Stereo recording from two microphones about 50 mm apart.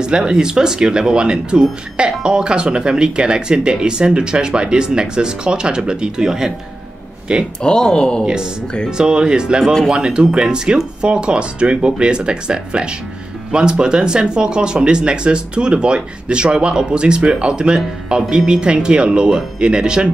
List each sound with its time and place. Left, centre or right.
0.0 s speech: centre
7.6 s speech: centre
8.9 s speech: centre